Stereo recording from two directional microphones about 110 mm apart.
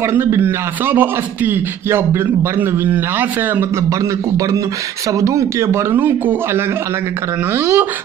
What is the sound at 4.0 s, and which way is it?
A man's voice, 30° right (ahead or behind).